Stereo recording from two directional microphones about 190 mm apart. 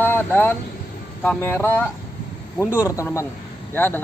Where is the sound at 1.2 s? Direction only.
10° left (ahead or behind).